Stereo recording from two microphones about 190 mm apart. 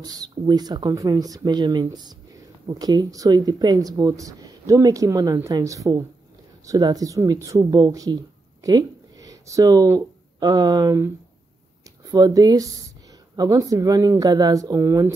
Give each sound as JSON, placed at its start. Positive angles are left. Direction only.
{"t": 0.0, "sound": "speech", "side_deg": -20}